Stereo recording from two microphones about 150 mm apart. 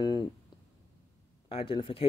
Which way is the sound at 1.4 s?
40° left (ahead or behind).